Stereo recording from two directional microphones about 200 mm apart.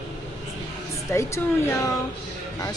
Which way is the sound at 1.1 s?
15° left (ahead or behind).